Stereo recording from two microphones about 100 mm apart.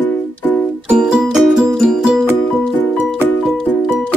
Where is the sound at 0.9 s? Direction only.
10° right (ahead or behind).